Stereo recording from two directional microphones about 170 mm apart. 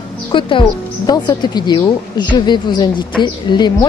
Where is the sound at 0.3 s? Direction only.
30° left (ahead or behind).